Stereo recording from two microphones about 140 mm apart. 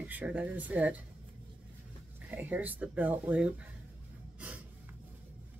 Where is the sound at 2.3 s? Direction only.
10° right (ahead or behind).